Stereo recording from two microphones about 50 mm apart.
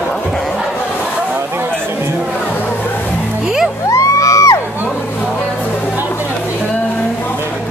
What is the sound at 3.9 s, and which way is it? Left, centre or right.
Music, left.